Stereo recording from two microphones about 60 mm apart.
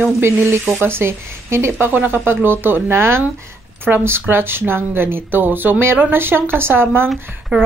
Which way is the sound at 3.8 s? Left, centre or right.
Right.